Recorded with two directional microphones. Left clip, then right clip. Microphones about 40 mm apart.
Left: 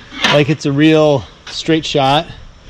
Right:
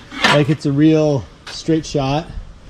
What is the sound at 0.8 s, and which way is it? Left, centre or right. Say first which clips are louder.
Speech: left 4 dB; centre.